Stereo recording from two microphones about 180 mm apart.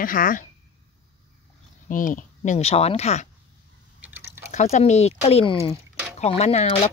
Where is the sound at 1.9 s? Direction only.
45° left (ahead or behind).